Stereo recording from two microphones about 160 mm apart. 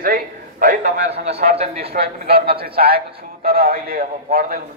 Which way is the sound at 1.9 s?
75° right (ahead or behind).